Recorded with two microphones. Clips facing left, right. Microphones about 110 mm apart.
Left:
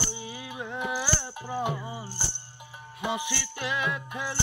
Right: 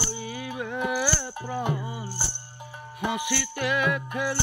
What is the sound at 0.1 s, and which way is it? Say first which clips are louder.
Carnatic music: right 5 dB; 20° left (ahead or behind).